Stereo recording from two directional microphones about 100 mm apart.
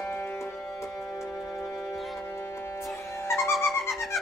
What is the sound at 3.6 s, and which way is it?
Cat, 25° left (ahead or behind).